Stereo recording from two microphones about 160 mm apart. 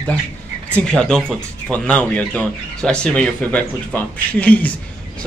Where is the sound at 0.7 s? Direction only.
5° left (ahead or behind).